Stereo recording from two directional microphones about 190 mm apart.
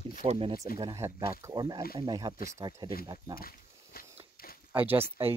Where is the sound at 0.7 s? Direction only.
15° right (ahead or behind).